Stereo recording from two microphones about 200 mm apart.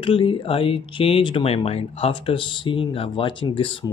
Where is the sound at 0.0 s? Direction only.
25° left (ahead or behind).